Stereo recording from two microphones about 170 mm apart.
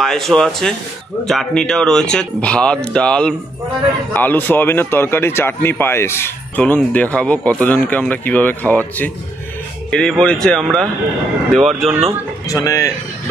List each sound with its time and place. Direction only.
0.0 s speech: 5° left (ahead or behind)
12.4 s a man's voice: 20° left (ahead or behind)